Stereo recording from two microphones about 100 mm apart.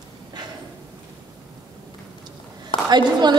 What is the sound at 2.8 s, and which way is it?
Speech, 45° right (ahead or behind).